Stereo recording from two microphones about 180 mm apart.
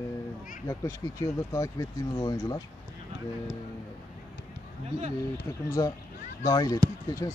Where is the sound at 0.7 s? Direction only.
20° left (ahead or behind).